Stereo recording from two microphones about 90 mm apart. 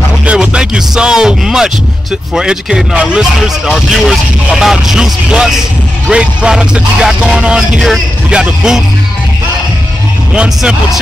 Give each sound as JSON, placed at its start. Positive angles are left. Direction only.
{"t": 0.2, "sound": "speech", "side_deg": -15}
{"t": 10.3, "sound": "speech", "side_deg": -10}